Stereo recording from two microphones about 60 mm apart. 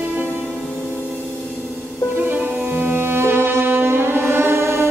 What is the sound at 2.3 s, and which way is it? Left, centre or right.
Music, right.